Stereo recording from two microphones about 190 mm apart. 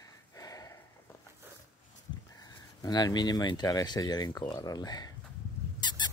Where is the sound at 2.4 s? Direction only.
20° left (ahead or behind).